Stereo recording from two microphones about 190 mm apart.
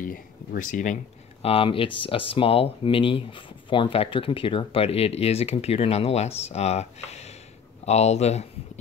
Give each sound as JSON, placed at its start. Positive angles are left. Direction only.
{"t": 0.0, "sound": "speech", "side_deg": 45}
{"t": 1.4, "sound": "speech", "side_deg": 30}